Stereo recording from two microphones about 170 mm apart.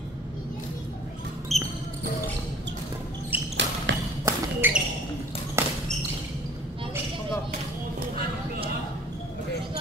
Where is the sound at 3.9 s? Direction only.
90° right.